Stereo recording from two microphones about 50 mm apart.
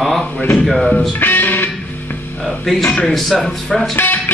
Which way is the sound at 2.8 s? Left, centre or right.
Left.